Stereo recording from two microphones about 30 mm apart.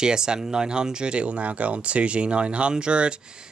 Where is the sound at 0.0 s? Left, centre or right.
Right.